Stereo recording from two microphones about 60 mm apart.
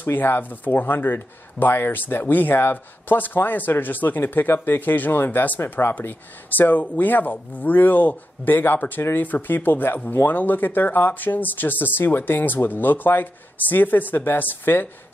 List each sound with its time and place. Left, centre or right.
0.0 s speech: left
5.6 s speech: left